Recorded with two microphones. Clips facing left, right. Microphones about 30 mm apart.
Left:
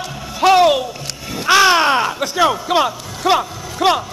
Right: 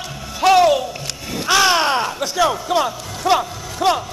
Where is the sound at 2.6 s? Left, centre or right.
Left.